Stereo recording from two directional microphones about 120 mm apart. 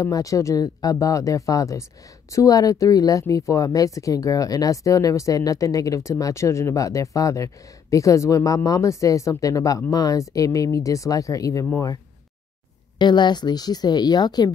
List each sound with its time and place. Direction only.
0.0 s speech: 30° left (ahead or behind)
13.0 s a woman's voice: 40° left (ahead or behind)